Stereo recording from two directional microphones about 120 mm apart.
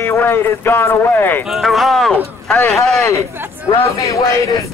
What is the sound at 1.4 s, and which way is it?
Speech, centre (ahead or behind).